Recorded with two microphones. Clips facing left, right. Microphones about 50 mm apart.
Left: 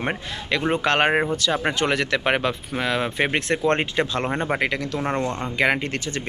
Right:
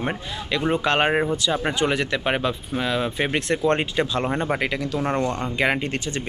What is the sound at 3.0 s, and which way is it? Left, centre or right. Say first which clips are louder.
Speech: left 1 dB; left.